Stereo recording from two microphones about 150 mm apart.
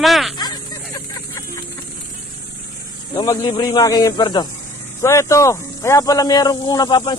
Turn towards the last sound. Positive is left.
turn(degrees=30)  # may be behind; listen again after turning